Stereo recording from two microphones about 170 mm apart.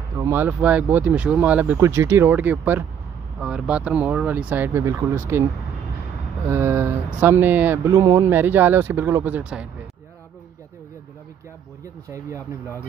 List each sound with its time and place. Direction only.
0.1 s speech: 15° right (ahead or behind)
6.5 s speech: 15° right (ahead or behind)
11.8 s speech: 15° right (ahead or behind)